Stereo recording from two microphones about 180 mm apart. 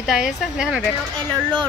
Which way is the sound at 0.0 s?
Centre (ahead or behind).